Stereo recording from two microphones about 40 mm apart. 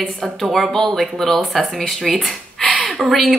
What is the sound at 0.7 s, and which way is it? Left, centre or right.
A woman's voice, centre.